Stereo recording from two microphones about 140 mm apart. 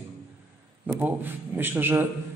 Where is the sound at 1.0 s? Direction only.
15° right (ahead or behind).